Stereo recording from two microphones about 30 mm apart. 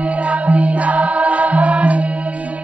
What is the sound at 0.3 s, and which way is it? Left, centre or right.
Music, right.